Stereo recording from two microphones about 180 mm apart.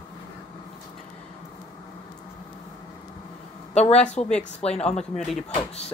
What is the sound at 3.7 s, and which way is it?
A woman's voice, 35° left (ahead or behind).